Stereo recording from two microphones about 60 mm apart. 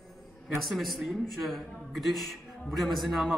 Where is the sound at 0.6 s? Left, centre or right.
Centre.